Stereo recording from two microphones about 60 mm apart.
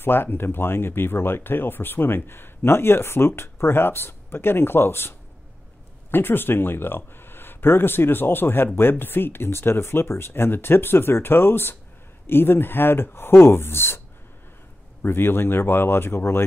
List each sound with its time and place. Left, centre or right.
0.0 s speech: left
6.1 s speech: left